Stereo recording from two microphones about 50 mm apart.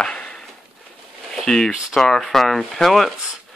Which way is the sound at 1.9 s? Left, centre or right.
Centre.